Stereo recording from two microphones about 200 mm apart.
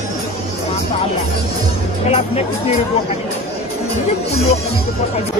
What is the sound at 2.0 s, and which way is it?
Speech, 30° left (ahead or behind).